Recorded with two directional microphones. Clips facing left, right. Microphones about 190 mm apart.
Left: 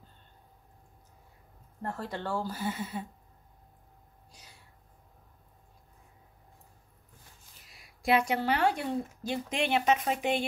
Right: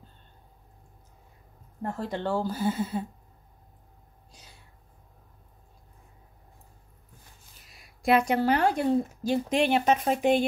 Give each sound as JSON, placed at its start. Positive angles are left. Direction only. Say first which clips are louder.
{"t": 1.8, "sound": "speech", "louder": "right 4 dB", "side_deg": -15}
{"t": 8.0, "sound": "speech", "louder": "right 4 dB", "side_deg": -45}